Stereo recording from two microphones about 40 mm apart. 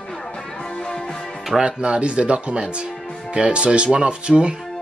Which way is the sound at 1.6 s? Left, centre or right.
Right.